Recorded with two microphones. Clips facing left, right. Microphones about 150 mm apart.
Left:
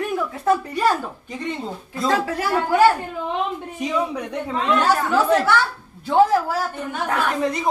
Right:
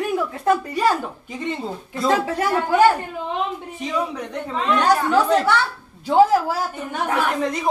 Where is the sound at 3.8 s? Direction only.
10° left (ahead or behind).